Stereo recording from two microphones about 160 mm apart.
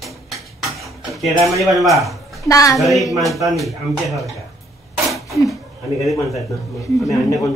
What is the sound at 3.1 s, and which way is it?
Speech, centre (ahead or behind).